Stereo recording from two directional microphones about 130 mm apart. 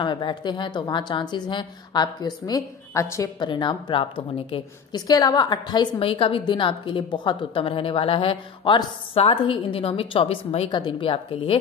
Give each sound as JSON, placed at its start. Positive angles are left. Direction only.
{"t": 0.0, "sound": "a woman's voice", "side_deg": 35}
{"t": 4.9, "sound": "a woman's voice", "side_deg": 30}